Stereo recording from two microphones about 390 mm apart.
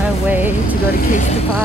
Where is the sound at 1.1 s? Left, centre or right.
Centre.